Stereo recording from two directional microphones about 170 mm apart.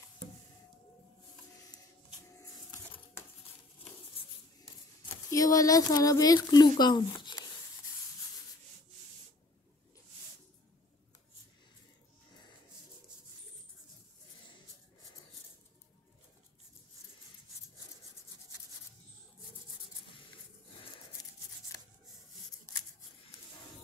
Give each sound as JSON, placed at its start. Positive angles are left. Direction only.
{"t": 5.3, "sound": "speech", "side_deg": 20}